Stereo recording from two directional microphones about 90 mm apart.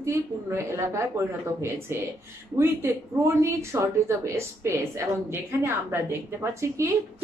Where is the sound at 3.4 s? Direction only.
30° right (ahead or behind).